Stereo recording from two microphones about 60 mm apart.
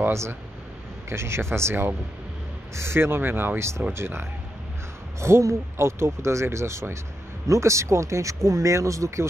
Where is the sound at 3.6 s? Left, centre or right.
Right.